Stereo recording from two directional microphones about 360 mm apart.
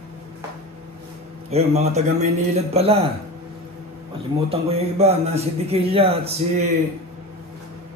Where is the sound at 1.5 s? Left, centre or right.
Centre.